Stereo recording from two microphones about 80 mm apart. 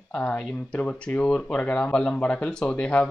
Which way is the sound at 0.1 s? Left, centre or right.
Centre.